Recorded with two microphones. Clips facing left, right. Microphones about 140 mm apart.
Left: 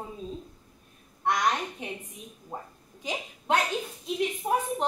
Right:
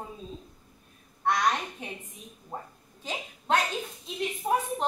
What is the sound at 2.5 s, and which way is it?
A woman's voice, 10° left (ahead or behind).